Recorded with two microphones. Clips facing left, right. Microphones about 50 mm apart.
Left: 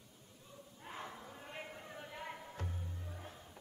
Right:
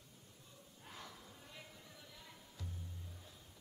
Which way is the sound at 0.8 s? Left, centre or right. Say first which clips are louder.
Left 7 dB; left.